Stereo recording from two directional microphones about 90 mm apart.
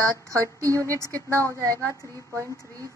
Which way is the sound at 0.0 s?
35° right (ahead or behind).